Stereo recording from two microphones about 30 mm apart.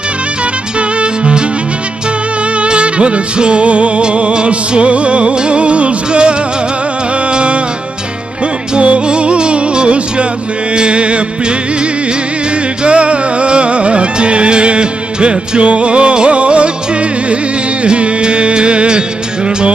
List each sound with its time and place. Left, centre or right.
0.7 s music: right
2.5 s music: right
8.7 s music: right